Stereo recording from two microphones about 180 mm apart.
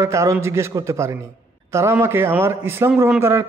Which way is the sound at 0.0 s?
15° right (ahead or behind).